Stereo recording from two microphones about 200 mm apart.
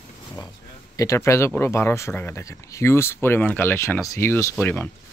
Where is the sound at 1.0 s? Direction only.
15° left (ahead or behind).